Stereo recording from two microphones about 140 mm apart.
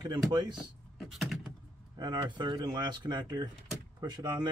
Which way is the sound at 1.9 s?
30° right (ahead or behind).